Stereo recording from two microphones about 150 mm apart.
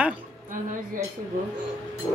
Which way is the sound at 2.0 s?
20° left (ahead or behind).